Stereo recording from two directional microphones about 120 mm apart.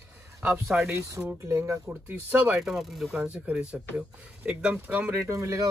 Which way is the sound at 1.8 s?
15° right (ahead or behind).